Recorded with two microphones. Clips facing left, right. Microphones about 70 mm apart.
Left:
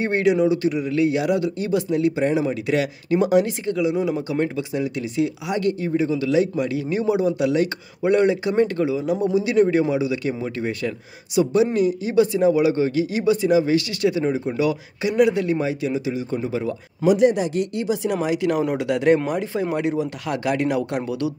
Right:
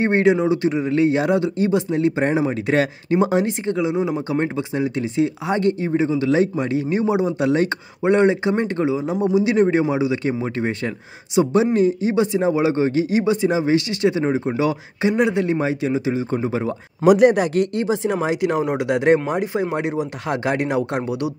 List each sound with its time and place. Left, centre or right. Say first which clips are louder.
0.0 s speech: right 2 dB; right
17.0 s speech: right 4 dB; right
17.8 s speech: right 2 dB; right